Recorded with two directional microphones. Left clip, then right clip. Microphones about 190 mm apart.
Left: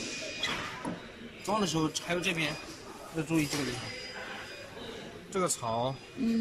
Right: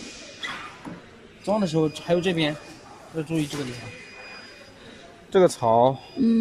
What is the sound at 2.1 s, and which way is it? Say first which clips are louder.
Speech: right 8 dB; 35° right (ahead or behind).